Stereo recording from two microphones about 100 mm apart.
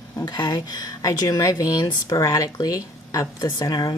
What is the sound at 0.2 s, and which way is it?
Speech, 45° left (ahead or behind).